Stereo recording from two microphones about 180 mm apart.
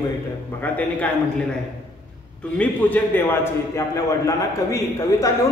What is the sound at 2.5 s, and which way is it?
A man's voice, 10° left (ahead or behind).